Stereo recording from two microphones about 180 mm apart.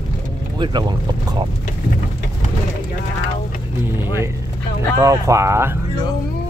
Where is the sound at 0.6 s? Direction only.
25° right (ahead or behind).